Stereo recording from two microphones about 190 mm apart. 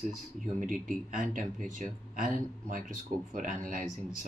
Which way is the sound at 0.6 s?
45° right (ahead or behind).